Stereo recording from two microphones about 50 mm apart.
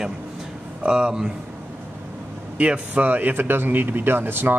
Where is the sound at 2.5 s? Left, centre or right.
Right.